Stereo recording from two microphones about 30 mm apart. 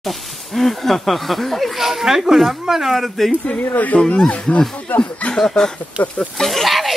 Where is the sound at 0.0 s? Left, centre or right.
Centre.